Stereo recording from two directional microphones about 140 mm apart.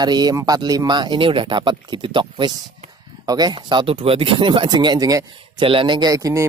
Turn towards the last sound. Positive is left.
turn(degrees=-25)  # may be behind; listen again after turning